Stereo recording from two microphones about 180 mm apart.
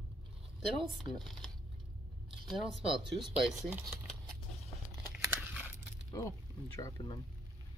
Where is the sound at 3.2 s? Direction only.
Centre (ahead or behind).